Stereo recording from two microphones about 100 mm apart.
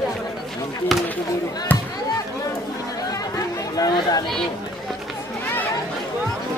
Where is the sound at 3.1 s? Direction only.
35° left (ahead or behind).